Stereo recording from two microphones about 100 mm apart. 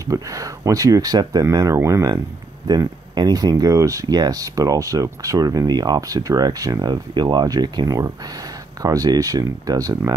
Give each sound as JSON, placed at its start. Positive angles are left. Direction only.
{"t": 0.0, "sound": "speech", "side_deg": -35}
{"t": 2.6, "sound": "speech", "side_deg": -40}